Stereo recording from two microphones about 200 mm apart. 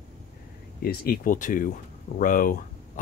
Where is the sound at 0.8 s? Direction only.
50° left (ahead or behind).